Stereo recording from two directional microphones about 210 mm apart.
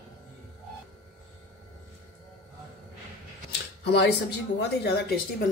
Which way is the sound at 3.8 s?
50° left (ahead or behind).